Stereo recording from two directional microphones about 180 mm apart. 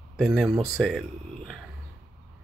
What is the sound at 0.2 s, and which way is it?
Speech, centre (ahead or behind).